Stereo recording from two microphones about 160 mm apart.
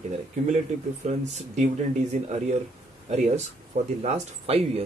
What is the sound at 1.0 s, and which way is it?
Speech, 45° right (ahead or behind).